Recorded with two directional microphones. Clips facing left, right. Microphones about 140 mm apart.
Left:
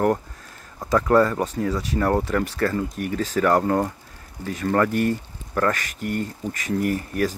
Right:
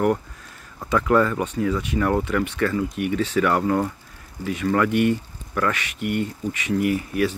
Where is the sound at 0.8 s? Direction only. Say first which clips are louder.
Left 1 dB; 35° left (ahead or behind).